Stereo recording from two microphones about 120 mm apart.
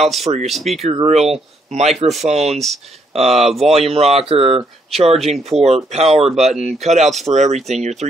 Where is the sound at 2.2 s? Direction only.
65° right (ahead or behind).